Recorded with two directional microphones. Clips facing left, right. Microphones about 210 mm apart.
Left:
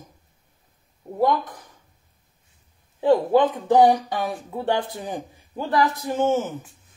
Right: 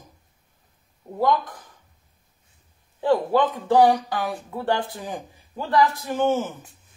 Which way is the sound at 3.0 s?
20° left (ahead or behind).